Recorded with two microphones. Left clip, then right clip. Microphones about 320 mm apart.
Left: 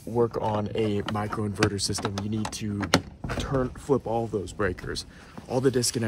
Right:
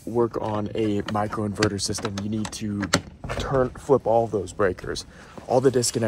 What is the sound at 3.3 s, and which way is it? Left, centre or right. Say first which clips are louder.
Speech: right 5 dB; centre.